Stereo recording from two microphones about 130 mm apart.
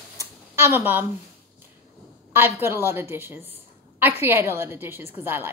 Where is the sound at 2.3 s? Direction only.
15° right (ahead or behind).